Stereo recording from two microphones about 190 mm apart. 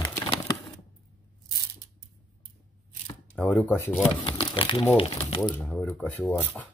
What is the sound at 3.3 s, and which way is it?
Speech, 5° left (ahead or behind).